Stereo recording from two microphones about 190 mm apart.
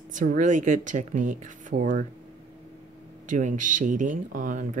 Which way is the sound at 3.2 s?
40° right (ahead or behind).